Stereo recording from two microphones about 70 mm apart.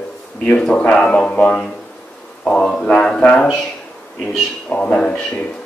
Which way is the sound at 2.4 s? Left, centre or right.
Centre.